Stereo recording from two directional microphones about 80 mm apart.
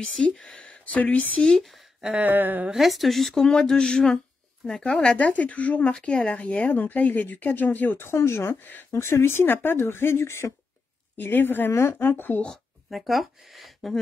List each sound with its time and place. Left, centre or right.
0.5 s speech: centre
1.4 s speech: centre
2.1 s a sound: right
2.7 s speech: centre; by 12.4 s left
12.4 s speech: centre